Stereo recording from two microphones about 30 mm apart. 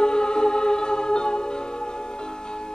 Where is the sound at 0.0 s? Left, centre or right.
Left.